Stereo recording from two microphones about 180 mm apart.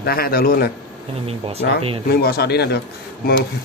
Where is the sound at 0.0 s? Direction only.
55° left (ahead or behind).